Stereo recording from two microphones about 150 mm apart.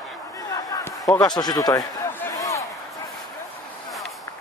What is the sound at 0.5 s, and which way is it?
Basketball bounce, 25° left (ahead or behind).